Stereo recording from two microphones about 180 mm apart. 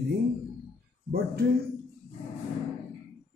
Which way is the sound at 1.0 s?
55° right (ahead or behind).